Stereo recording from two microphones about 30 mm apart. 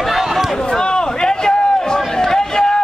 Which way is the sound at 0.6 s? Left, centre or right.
Left.